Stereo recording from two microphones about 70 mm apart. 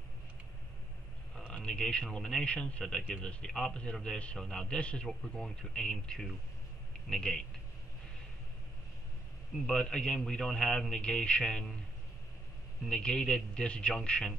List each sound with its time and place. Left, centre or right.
1.5 s a man's voice: centre
9.7 s a man's voice: centre
12.9 s a man's voice: centre